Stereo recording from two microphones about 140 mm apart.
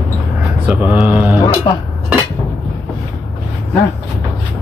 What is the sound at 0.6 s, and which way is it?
Speech, 10° right (ahead or behind).